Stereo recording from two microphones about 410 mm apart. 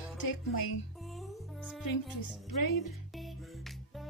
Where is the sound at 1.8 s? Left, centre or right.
Left.